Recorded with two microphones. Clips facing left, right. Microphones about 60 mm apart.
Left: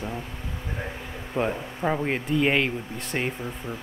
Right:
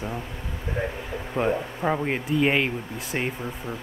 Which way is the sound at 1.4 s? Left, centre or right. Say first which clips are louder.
Right 2 dB; centre.